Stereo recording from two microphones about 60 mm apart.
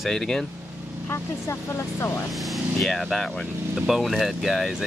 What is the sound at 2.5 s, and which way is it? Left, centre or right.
Speech, centre.